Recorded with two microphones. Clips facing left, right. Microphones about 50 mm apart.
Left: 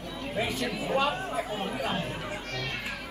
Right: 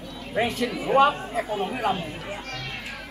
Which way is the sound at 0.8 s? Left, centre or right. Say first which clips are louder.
Right 9 dB; right.